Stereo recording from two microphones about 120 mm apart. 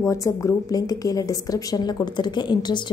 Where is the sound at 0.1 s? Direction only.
25° left (ahead or behind).